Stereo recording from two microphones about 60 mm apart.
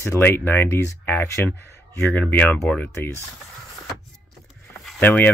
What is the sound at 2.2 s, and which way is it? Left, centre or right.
Speech, left.